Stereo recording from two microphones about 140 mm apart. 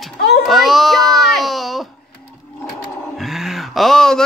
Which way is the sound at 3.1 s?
Centre (ahead or behind).